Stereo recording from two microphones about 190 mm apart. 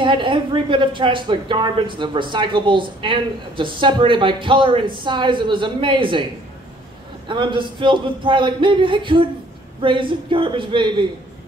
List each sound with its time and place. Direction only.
0.0 s speech: 25° right (ahead or behind)
7.2 s speech: 25° right (ahead or behind)